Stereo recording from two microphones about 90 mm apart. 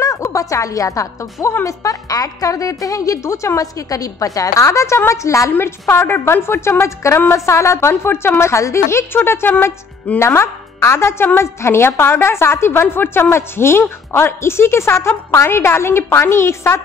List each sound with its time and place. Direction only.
0.0 s a woman's voice: 35° left (ahead or behind)